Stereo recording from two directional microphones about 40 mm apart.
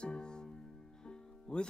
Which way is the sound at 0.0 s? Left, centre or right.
Left.